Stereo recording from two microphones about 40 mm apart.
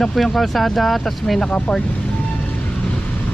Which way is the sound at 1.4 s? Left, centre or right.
Left.